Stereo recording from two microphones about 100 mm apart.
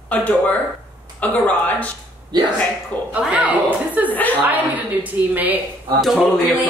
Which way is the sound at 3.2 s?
10° right (ahead or behind).